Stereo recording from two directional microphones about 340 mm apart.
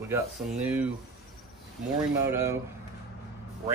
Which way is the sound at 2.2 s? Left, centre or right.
Centre.